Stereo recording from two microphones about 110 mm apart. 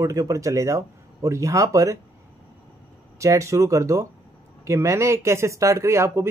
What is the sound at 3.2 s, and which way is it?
Speech, 30° right (ahead or behind).